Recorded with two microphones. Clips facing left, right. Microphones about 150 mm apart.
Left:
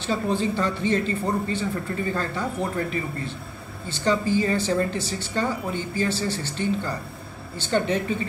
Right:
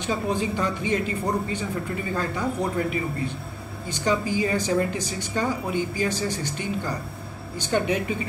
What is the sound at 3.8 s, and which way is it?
A man's voice, 10° right (ahead or behind).